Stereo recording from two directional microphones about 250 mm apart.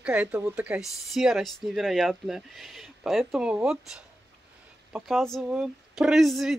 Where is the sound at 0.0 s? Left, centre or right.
Centre.